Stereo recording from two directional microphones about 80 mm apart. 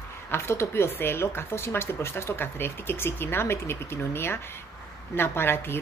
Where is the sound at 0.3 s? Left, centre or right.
Left.